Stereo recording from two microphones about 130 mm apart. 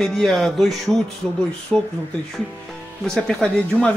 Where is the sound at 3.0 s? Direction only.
5° left (ahead or behind).